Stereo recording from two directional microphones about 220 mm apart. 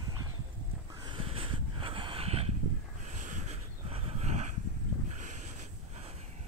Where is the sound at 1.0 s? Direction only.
25° right (ahead or behind).